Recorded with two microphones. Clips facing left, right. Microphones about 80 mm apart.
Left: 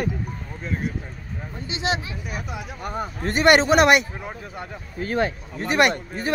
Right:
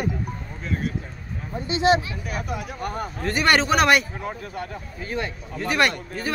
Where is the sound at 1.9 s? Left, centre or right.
Left.